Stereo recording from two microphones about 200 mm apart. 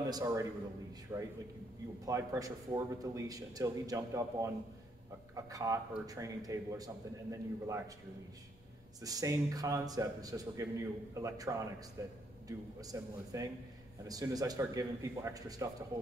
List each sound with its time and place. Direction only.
0.1 s a man's voice: 15° right (ahead or behind)
9.0 s a man's voice: 15° right (ahead or behind)